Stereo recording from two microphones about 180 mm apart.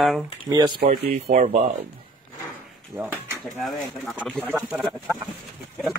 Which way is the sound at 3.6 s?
Centre (ahead or behind).